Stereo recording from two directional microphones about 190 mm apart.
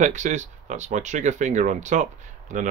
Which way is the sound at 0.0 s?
40° right (ahead or behind).